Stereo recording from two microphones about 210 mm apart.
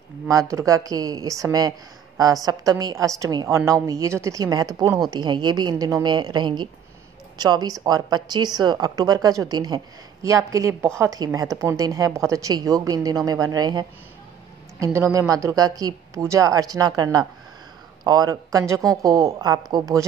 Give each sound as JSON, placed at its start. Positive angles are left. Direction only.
{"t": 0.3, "sound": "a woman's voice", "side_deg": -15}